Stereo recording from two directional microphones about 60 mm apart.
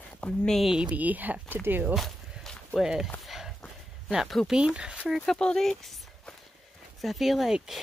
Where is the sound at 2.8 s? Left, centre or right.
Centre.